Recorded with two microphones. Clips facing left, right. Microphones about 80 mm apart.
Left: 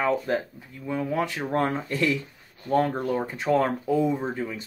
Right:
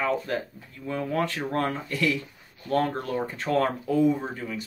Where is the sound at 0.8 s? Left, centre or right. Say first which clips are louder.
Left 1 dB; centre.